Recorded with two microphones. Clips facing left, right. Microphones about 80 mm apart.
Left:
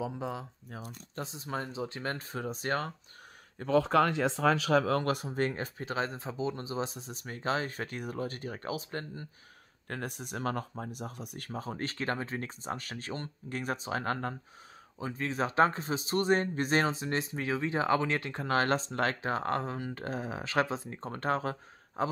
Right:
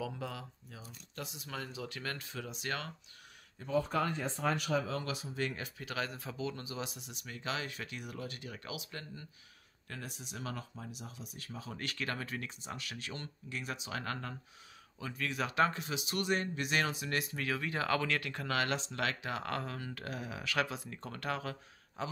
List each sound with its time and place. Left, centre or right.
0.0 s speech: left
0.7 s speech: left
1.1 s speech: left
3.5 s speech: left
5.5 s speech: left
9.8 s speech: left